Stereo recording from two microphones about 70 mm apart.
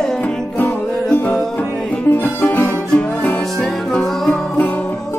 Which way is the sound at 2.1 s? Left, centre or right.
Left.